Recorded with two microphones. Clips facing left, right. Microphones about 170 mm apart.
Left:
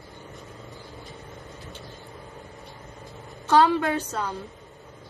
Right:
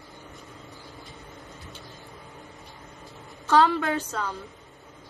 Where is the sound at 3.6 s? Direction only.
15° left (ahead or behind).